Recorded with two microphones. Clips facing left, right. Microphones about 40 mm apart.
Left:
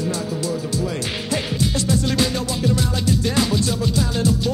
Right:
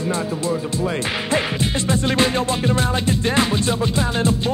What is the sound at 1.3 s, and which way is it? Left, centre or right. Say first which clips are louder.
Music: right 1 dB; right.